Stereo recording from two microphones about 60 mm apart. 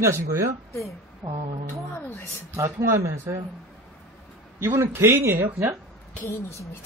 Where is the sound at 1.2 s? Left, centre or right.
Right.